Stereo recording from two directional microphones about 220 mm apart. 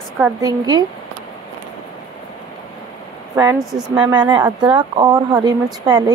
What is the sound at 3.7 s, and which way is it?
Speech, 5° right (ahead or behind).